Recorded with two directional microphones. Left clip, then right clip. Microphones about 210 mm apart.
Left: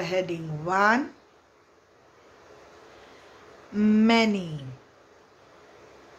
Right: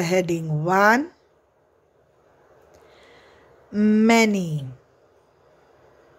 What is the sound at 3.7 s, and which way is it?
Speech, 30° right (ahead or behind).